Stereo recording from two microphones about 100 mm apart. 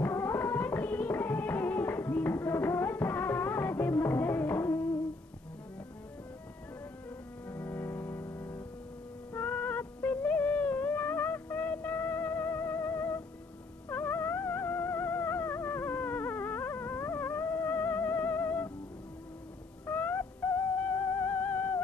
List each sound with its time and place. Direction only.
0.0 s music: 20° left (ahead or behind)
7.4 s music: 25° left (ahead or behind)
19.9 s theremin: 15° left (ahead or behind)